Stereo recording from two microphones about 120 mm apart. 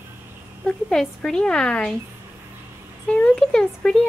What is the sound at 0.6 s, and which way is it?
A woman's voice, 5° left (ahead or behind).